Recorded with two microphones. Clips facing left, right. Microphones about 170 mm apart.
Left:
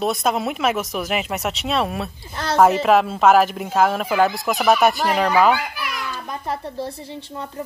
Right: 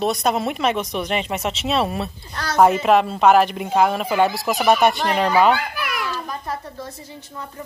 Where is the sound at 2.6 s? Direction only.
Centre (ahead or behind).